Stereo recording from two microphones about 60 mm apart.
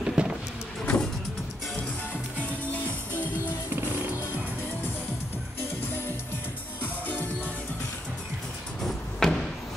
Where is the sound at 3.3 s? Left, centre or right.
Right.